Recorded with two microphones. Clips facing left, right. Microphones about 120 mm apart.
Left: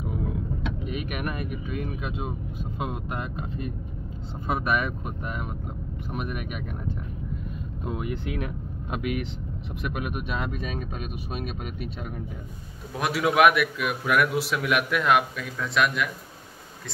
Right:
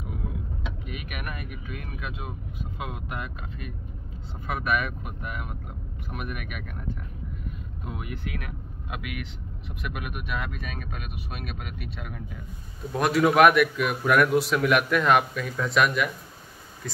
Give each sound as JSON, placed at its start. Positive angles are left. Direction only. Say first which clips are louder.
{"t": 0.8, "sound": "speech", "louder": "left 7 dB", "side_deg": 30}
{"t": 7.8, "sound": "speech", "louder": "left 5 dB", "side_deg": 25}
{"t": 12.9, "sound": "a man's voice", "louder": "right 3 dB", "side_deg": 0}